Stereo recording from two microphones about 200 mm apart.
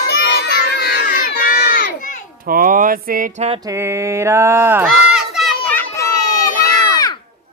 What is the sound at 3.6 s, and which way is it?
Speech, 15° right (ahead or behind).